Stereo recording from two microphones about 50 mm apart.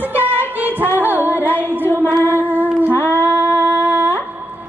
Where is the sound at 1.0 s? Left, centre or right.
Right.